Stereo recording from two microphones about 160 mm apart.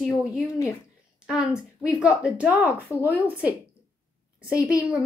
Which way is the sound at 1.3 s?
5° right (ahead or behind).